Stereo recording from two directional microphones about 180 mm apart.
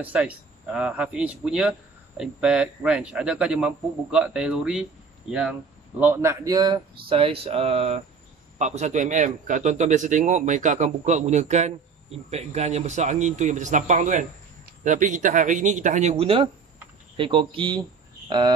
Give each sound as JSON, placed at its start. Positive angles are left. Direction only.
{"t": 0.0, "sound": "a man's voice", "side_deg": -5}
{"t": 5.9, "sound": "a man's voice", "side_deg": -10}